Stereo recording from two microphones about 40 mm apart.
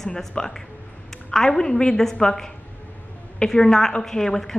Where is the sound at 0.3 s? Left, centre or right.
Centre.